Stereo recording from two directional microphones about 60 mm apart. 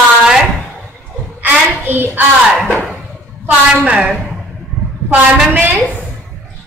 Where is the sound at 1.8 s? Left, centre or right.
Right.